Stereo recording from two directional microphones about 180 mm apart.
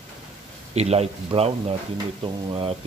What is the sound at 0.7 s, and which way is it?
Speech, 35° right (ahead or behind).